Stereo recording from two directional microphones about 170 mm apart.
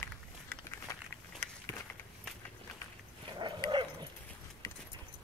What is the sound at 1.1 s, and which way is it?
Walk, 10° left (ahead or behind).